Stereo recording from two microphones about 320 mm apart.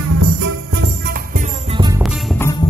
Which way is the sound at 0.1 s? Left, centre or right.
Right.